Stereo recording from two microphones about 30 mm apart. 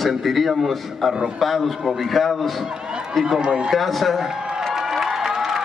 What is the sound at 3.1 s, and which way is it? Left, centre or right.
Speech, centre.